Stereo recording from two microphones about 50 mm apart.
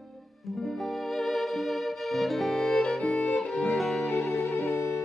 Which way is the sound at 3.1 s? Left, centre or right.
Left.